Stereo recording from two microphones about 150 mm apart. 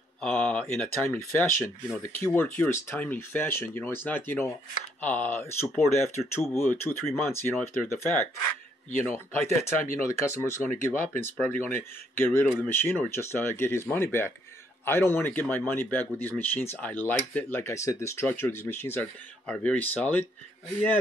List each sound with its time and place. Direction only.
0.2 s speech: 5° left (ahead or behind)
1.0 s speech: 15° left (ahead or behind)
9.0 s speech: 5° left (ahead or behind)
10.0 s speech: 15° left (ahead or behind)